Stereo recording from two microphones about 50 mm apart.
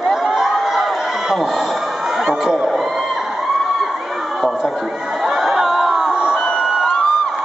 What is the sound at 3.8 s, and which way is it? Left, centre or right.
Crowd, centre.